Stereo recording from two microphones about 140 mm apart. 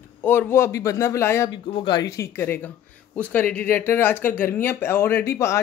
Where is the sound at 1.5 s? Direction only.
40° left (ahead or behind).